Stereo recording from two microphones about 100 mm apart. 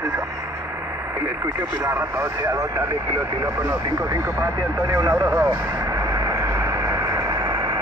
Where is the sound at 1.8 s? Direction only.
30° right (ahead or behind).